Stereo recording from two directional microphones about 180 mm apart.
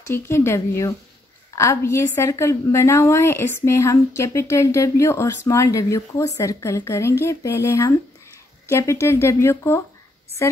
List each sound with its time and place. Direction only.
0.1 s a woman's voice: 15° left (ahead or behind)